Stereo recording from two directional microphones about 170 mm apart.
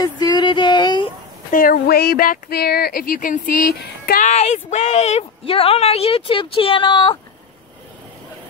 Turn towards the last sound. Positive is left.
turn(degrees=30)  # may be behind; listen again after turning